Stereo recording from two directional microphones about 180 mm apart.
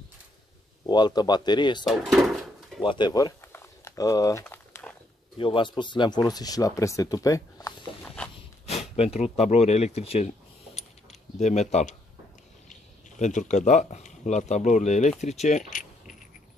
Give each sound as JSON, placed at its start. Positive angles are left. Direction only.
{"t": 0.8, "sound": "speech", "side_deg": 25}
{"t": 1.9, "sound": "drawer open or close", "side_deg": 0}
{"t": 2.8, "sound": "a sound", "side_deg": 25}
{"t": 5.4, "sound": "speech", "side_deg": 30}
{"t": 8.6, "sound": "a sound", "side_deg": 35}
{"t": 13.2, "sound": "a man's voice", "side_deg": 40}